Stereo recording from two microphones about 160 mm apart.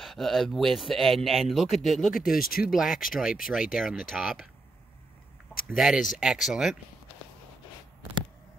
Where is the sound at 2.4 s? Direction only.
65° left (ahead or behind).